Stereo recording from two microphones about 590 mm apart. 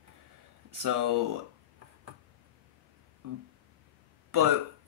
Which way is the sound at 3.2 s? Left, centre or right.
Right.